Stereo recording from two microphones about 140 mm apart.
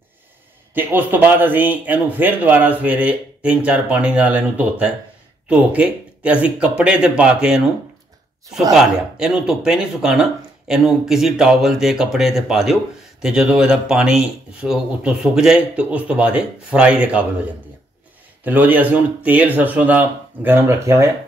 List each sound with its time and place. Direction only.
0.7 s speech: 15° right (ahead or behind)
8.7 s speech: 5° right (ahead or behind)
18.4 s speech: 10° right (ahead or behind)